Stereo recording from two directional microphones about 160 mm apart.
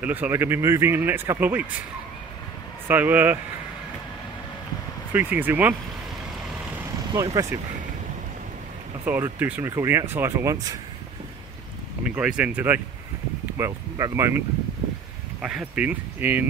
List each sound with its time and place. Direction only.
0.0 s speech: 10° right (ahead or behind)
2.9 s speech: 10° right (ahead or behind)
5.1 s speech: 10° right (ahead or behind)
7.1 s speech: 20° right (ahead or behind)
9.0 s speech: 10° right (ahead or behind)
12.0 s speech: 5° right (ahead or behind)
15.4 s speech: 5° right (ahead or behind)